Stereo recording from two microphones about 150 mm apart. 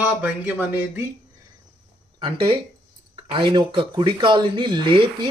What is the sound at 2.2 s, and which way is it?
Speech, 30° right (ahead or behind).